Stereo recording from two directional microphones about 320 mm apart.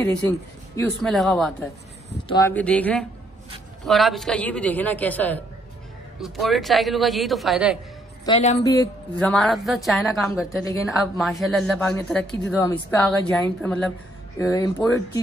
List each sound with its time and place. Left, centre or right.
0.7 s speech: centre
2.0 s speech: centre
8.3 s a woman's voice: left
8.6 s speech: centre